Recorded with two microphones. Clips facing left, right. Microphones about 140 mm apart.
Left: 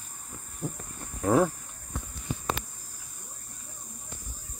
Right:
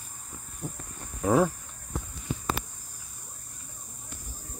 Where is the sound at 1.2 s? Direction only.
Centre (ahead or behind).